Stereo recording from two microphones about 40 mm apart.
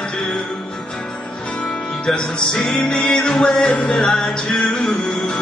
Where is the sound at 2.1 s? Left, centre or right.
Centre.